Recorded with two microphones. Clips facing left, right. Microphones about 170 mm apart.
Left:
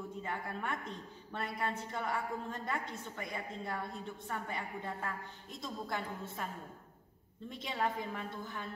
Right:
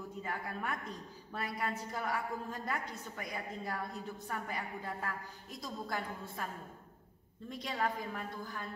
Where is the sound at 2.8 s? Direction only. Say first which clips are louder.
Left 1 dB; 25° left (ahead or behind).